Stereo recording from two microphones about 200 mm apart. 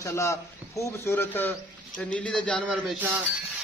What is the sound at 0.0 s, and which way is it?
A man's voice, 15° left (ahead or behind).